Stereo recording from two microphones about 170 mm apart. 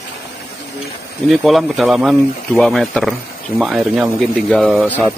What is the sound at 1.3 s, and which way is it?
Speech, centre (ahead or behind).